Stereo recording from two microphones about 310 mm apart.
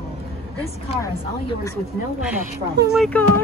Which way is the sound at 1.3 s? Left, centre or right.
Centre.